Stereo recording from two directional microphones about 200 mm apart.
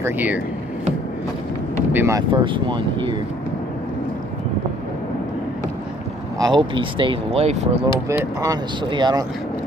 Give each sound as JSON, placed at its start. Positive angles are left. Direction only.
{"t": 0.0, "sound": "speech", "side_deg": -10}
{"t": 1.9, "sound": "speech", "side_deg": -10}
{"t": 6.3, "sound": "speech", "side_deg": -20}
{"t": 8.1, "sound": "speech", "side_deg": -20}